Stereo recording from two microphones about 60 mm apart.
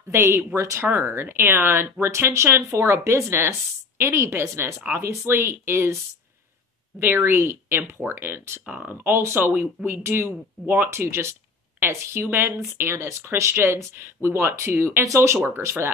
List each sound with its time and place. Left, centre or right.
0.1 s speech: right
0.8 s speech: right
7.0 s speech: right
10.9 s speech: right